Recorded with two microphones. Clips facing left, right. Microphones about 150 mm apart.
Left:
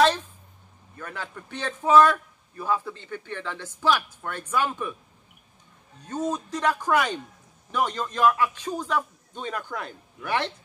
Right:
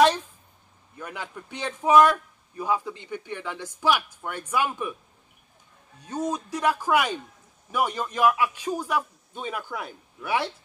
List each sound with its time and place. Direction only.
0.9 s a man's voice: 15° right (ahead or behind)
6.0 s a man's voice: 10° right (ahead or behind)